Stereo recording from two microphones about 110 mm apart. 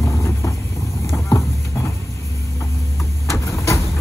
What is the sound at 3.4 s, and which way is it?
Vehicle, 30° left (ahead or behind).